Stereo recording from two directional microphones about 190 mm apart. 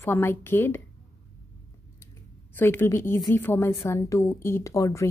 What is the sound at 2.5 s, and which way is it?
A woman's voice, 10° left (ahead or behind).